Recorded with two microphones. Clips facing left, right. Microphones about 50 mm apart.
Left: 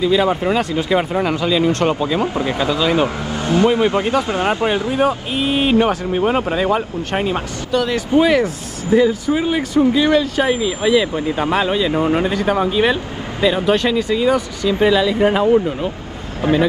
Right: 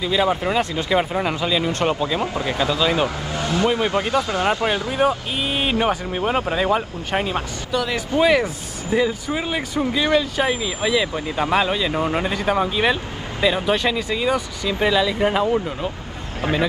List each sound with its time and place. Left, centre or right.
0.0 s speech: centre
2.1 s speech: left
4.9 s speech: centre
7.7 s speech: centre